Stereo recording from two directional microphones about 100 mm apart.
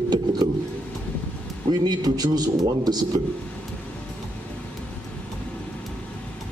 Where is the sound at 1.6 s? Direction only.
40° right (ahead or behind).